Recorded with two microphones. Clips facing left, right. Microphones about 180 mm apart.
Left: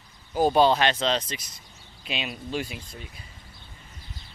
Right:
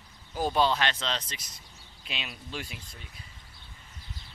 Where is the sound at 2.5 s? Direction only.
10° left (ahead or behind).